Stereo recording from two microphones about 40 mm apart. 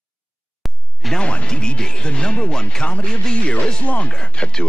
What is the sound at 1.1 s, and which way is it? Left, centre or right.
A woman's voice, left.